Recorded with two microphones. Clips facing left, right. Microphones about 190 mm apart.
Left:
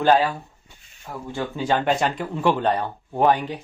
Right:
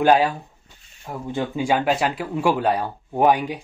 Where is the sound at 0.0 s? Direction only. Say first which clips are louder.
Right 1 dB; 15° right (ahead or behind).